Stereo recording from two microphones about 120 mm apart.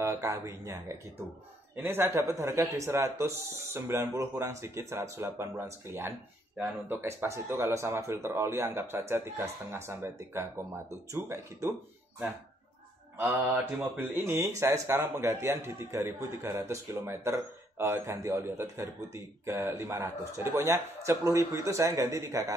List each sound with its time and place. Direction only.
0.0 s speech: 25° right (ahead or behind)
1.8 s a man's voice: 20° right (ahead or behind)
13.7 s a man's voice: 20° right (ahead or behind)